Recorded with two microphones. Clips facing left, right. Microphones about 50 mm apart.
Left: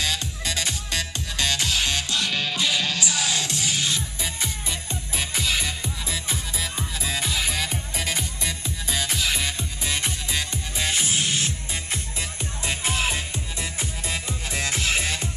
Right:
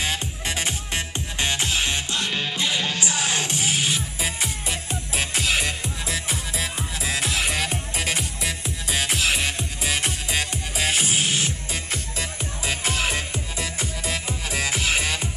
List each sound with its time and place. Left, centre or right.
0.0 s music: right
5.5 s music: centre
7.0 s music: centre